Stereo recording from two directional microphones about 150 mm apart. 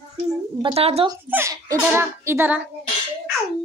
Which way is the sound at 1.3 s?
20° right (ahead or behind).